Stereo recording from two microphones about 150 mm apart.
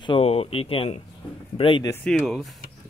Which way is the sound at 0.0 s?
40° left (ahead or behind).